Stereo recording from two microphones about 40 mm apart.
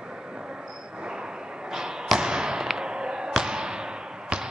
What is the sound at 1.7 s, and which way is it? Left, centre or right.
Basketball bounce, centre.